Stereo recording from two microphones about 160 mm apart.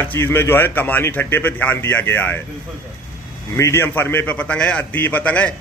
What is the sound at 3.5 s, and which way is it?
Speech, 15° left (ahead or behind).